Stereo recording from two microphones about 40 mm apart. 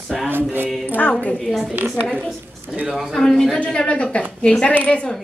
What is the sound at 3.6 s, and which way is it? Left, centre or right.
A man's voice, left.